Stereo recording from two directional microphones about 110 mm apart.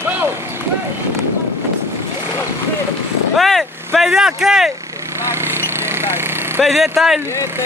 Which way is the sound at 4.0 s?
5° right (ahead or behind).